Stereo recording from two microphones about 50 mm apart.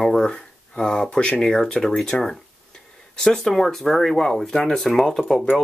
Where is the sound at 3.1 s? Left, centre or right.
Centre.